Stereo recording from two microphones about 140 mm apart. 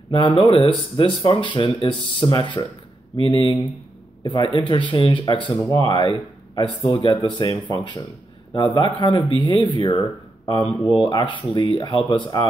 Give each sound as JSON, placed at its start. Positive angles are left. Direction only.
{"t": 0.1, "sound": "speech", "side_deg": 35}
{"t": 7.2, "sound": "speech", "side_deg": 30}